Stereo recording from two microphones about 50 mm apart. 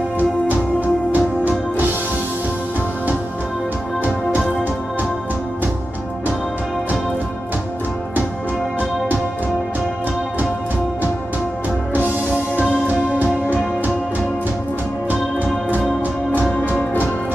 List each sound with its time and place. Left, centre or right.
0.2 s music: right
12.5 s music: right
15.0 s music: right
16.3 s music: left